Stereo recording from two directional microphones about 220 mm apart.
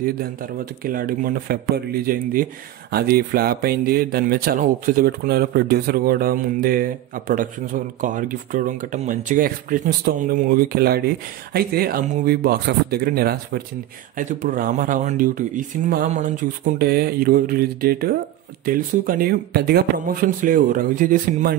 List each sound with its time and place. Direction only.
0.0 s speech: 40° right (ahead or behind)